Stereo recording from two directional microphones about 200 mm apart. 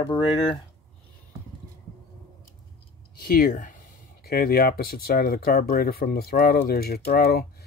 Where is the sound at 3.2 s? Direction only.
50° left (ahead or behind).